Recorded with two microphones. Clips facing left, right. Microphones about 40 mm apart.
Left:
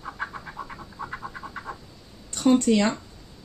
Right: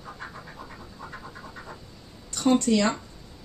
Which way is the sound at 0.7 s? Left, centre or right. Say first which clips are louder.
Left 5 dB; left.